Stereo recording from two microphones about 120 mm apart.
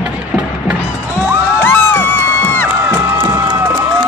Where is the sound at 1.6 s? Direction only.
20° left (ahead or behind).